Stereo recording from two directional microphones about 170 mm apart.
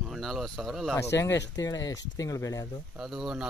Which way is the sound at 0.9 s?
15° left (ahead or behind).